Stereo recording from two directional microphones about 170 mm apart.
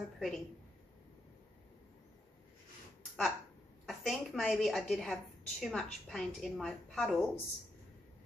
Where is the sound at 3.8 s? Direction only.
Centre (ahead or behind).